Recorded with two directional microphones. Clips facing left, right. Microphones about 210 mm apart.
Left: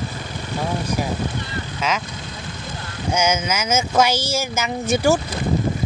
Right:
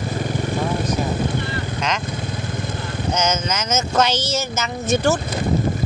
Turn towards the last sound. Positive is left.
turn(degrees=10)  # may be behind; listen again after turning